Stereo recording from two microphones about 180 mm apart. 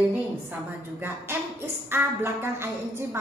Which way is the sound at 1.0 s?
10° right (ahead or behind).